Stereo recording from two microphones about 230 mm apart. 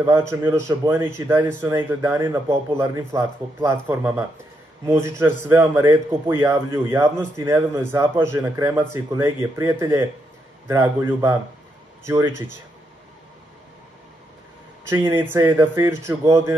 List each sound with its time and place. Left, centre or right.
0.0 s speech: centre
14.9 s speech: centre